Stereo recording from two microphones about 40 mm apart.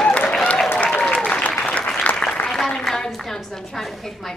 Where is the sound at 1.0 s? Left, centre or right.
Left.